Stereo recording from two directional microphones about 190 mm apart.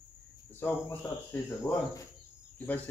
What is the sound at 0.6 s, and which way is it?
Speech, 10° left (ahead or behind).